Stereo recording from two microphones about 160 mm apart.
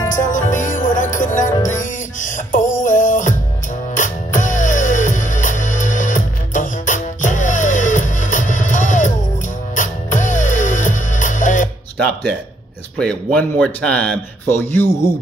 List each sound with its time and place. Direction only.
0.3 s music: 50° left (ahead or behind)
12.9 s speech: 5° left (ahead or behind)